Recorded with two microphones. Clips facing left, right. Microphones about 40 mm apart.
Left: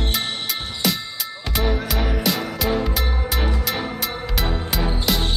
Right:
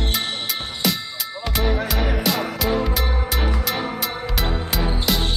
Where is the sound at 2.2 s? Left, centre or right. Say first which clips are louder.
Right 1 dB; centre.